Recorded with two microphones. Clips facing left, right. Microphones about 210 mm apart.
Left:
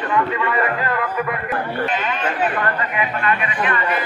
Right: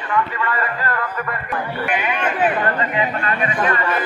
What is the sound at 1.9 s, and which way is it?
Speech, 15° right (ahead or behind).